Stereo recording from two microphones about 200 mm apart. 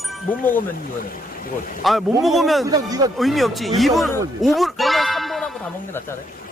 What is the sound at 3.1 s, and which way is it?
Speech, centre (ahead or behind).